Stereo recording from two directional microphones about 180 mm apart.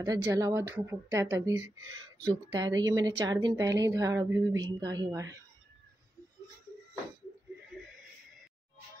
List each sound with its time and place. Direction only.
0.0 s a woman's voice: 20° right (ahead or behind)